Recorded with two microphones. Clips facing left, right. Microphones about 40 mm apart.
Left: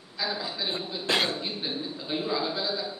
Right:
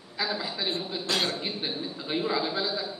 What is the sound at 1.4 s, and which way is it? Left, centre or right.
A man's voice, centre.